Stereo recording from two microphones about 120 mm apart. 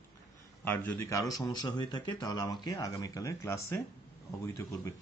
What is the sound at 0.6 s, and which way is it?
Speech, 15° left (ahead or behind).